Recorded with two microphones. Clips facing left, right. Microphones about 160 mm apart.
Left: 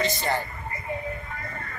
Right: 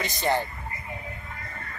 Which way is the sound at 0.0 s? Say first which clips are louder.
Even; 15° right (ahead or behind).